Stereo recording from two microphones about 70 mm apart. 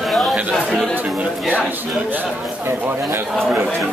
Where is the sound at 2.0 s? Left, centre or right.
Right.